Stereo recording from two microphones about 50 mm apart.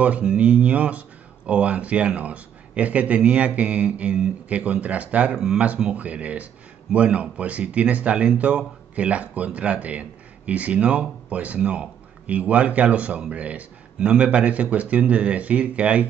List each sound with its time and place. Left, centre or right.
0.0 s speech: right